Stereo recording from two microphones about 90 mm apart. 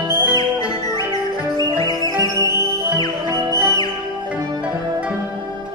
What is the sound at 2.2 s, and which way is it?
Music, 40° right (ahead or behind).